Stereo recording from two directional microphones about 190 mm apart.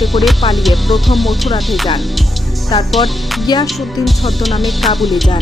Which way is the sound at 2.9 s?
Centre (ahead or behind).